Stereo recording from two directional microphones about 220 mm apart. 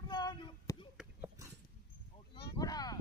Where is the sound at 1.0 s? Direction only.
10° right (ahead or behind).